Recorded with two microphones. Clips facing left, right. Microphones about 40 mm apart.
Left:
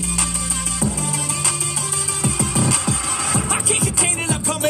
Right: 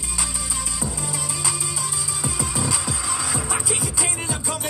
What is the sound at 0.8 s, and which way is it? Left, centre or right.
Music, centre.